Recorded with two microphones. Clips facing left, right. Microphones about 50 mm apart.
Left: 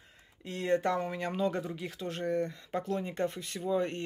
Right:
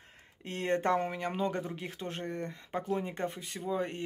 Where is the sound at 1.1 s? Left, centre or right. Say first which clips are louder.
Left 1 dB; right.